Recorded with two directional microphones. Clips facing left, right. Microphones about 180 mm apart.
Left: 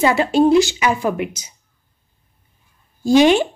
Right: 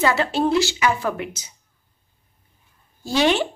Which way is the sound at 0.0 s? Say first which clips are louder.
Left 6 dB; 15° left (ahead or behind).